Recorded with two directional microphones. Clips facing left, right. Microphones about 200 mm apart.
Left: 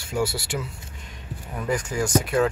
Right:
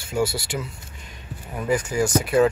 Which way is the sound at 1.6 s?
5° right (ahead or behind).